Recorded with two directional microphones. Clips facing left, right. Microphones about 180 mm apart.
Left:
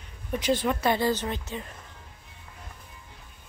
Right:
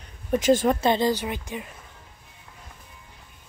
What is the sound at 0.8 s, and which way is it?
Speech, 20° right (ahead or behind).